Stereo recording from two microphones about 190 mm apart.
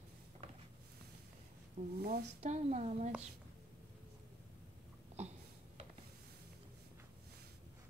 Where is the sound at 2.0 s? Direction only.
55° right (ahead or behind).